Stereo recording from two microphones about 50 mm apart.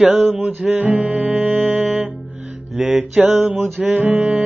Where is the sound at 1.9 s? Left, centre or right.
Right.